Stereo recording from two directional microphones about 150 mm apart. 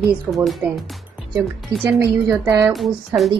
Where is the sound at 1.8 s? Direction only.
15° right (ahead or behind).